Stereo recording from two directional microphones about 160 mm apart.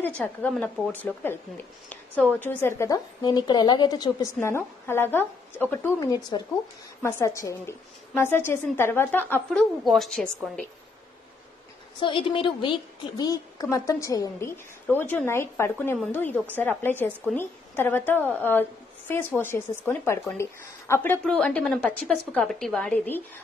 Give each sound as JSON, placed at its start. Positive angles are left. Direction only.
{"t": 0.2, "sound": "a woman's voice", "side_deg": 10}
{"t": 4.4, "sound": "a woman's voice", "side_deg": 15}
{"t": 12.0, "sound": "a woman's voice", "side_deg": 30}
{"t": 21.2, "sound": "a woman's voice", "side_deg": 5}